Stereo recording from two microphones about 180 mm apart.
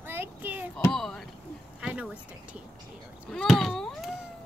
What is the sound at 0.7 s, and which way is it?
Speech, 5° left (ahead or behind).